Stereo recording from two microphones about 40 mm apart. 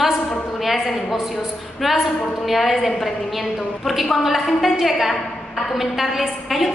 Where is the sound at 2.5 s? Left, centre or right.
Centre.